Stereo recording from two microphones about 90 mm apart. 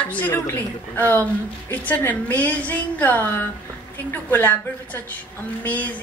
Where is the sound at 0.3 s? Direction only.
25° left (ahead or behind).